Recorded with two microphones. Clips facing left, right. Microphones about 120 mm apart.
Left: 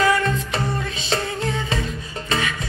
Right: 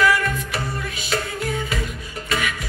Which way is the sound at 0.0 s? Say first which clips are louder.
Left 1 dB; 30° left (ahead or behind).